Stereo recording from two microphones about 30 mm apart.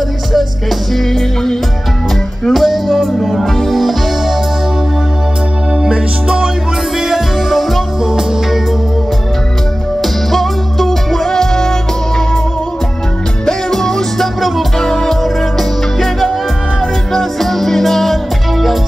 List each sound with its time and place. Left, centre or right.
0.3 s music: centre
0.9 s music: centre
2.5 s music: centre
2.9 s music: centre
3.6 s music: centre
5.9 s music: right
7.0 s music: centre
8.0 s music: centre
10.0 s music: centre
13.5 s music: centre
15.2 s music: centre